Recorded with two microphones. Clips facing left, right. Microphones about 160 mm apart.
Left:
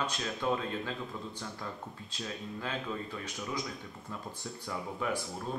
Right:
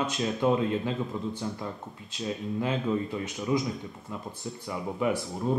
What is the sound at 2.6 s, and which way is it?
Mantra, 20° right (ahead or behind).